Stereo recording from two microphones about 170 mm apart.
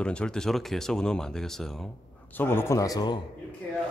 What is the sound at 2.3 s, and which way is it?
Speech, 15° left (ahead or behind).